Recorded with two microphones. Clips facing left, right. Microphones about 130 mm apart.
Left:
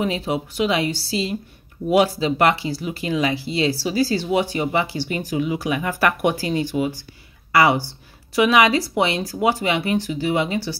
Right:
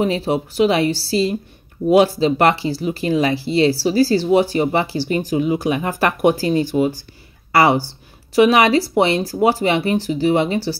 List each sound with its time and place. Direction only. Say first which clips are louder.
0.0 s speech: right 4 dB; 35° right (ahead or behind)